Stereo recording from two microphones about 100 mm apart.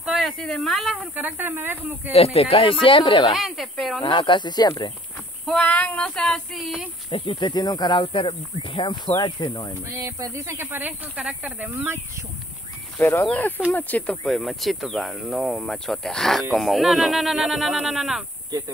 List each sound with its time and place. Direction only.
0.0 s a sound: centre (ahead or behind)
0.6 s speech: centre (ahead or behind)
1.1 s speech: 20° right (ahead or behind)
2.1 s speech: 80° left; by 3.3 s 55° left (ahead or behind)
3.3 s speech: centre (ahead or behind)
4.0 s speech: 50° left (ahead or behind)
5.5 s female singing: 15° left (ahead or behind)
7.1 s speech: 60° left (ahead or behind); by 9.8 s 45° left (ahead or behind)
9.9 s speech: 35° right (ahead or behind)
13.0 s speech: 20° left (ahead or behind)
13.7 s female singing: 15° left (ahead or behind)
14.2 s speech: centre (ahead or behind)